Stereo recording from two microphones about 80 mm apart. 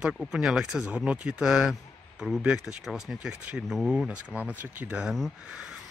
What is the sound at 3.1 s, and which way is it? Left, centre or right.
Speech, centre.